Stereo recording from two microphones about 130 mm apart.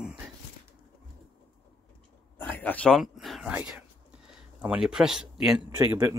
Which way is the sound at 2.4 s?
15° left (ahead or behind).